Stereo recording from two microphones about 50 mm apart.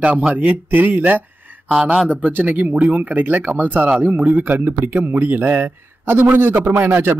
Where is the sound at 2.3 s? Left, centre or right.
Right.